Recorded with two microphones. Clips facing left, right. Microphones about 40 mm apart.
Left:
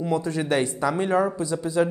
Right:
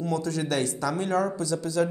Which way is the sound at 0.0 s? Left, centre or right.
Left.